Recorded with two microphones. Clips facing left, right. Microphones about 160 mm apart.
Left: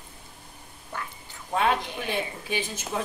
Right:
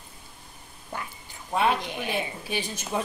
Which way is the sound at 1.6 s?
10° right (ahead or behind).